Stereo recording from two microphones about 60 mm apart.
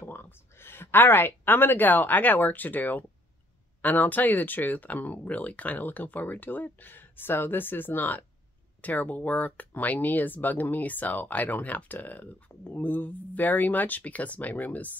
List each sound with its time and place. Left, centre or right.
0.0 s a woman's voice: left